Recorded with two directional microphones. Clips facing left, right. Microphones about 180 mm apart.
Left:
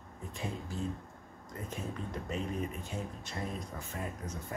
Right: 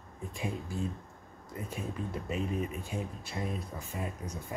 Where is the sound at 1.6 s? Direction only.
10° right (ahead or behind).